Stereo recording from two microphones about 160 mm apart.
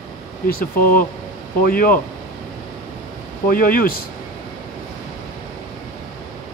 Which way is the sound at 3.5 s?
65° left (ahead or behind).